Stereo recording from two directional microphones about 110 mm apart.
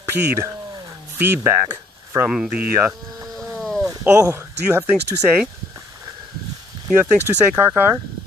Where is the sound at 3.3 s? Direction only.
Centre (ahead or behind).